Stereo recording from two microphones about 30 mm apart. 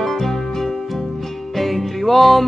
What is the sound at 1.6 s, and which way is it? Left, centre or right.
Music, centre.